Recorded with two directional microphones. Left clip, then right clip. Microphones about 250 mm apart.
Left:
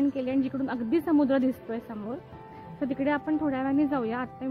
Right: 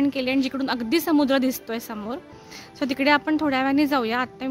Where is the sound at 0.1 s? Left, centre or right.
Right.